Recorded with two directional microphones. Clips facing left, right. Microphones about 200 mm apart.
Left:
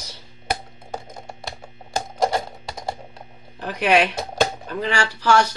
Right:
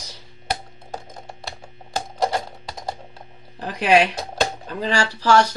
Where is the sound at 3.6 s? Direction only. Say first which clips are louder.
Right 1 dB; 35° right (ahead or behind).